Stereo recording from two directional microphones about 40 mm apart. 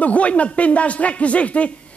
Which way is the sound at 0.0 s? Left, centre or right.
Left.